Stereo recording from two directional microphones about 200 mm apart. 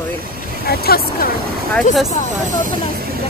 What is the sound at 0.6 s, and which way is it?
Speech, 50° left (ahead or behind).